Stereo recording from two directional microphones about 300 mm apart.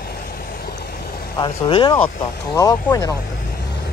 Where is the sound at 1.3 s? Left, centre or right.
Centre.